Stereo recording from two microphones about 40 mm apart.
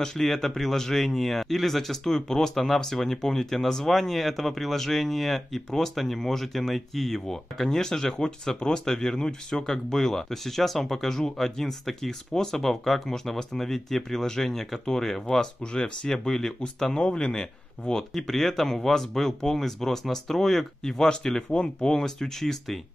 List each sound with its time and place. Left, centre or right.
0.0 s speech: centre
15.6 s speech: left
16.1 s speech: centre
17.0 s speech: left
18.1 s speech: centre
21.4 s speech: centre